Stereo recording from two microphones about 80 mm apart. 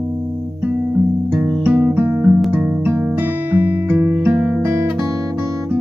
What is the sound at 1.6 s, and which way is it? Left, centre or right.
Music, right.